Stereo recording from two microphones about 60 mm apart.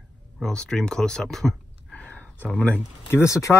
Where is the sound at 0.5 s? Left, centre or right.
Centre.